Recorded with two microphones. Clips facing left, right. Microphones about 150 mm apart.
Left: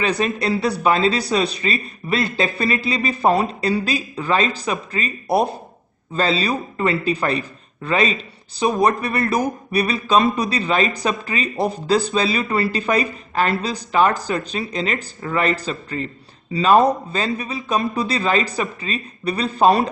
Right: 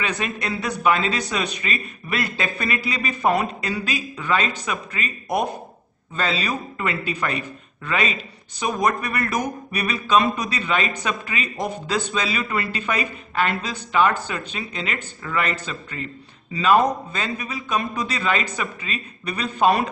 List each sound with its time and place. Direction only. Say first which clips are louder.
0.0 s a man's voice: left 6 dB; 35° left (ahead or behind)